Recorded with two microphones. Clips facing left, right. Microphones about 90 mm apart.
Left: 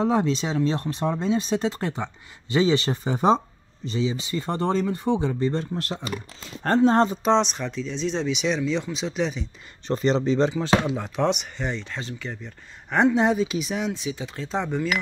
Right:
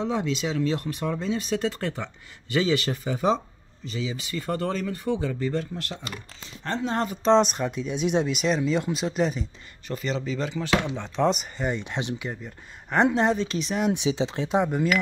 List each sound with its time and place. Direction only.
0.0 s speech: 40° left (ahead or behind)
7.3 s speech: 5° right (ahead or behind)
9.8 s speech: 35° left (ahead or behind)
11.0 s speech: 5° left (ahead or behind); by 12.4 s 15° right (ahead or behind)
12.9 s speech: centre (ahead or behind)
13.9 s speech: 25° right (ahead or behind)
14.5 s speech: 10° right (ahead or behind)